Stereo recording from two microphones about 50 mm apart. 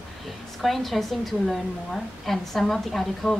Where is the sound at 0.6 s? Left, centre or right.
Centre.